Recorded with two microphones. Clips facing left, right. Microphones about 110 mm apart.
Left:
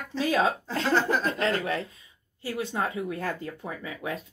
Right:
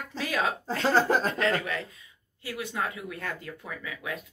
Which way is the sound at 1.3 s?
35° left (ahead or behind).